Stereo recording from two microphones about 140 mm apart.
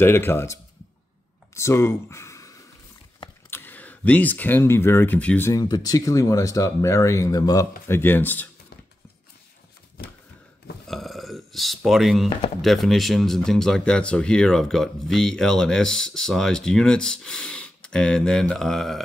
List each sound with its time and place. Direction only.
0.0 s a man's voice: 15° left (ahead or behind)
5.5 s speech: 25° left (ahead or behind)
10.9 s speech: centre (ahead or behind)